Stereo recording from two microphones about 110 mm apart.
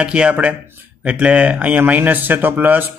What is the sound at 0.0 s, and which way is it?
Speech, 10° right (ahead or behind).